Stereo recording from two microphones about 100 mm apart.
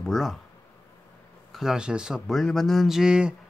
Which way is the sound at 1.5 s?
5° right (ahead or behind).